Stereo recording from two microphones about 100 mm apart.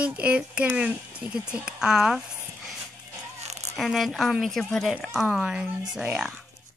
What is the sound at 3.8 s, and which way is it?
A child's voice, 5° right (ahead or behind).